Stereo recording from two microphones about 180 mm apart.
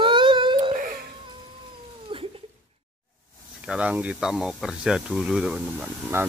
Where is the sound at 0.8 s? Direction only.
50° right (ahead or behind).